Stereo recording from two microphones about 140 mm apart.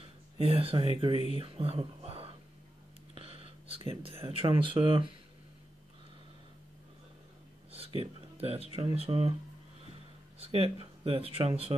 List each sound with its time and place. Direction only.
0.0 s a sound: 40° right (ahead or behind)
1.1 s speech: 50° left (ahead or behind)
1.4 s speech: 40° right (ahead or behind)
8.0 s speech: 45° right (ahead or behind)
10.4 s speech: 45° right (ahead or behind)